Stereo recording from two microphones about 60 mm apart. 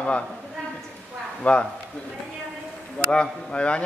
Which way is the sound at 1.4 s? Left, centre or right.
Centre.